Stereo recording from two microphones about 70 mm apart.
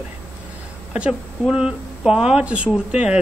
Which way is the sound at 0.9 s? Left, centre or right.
Centre.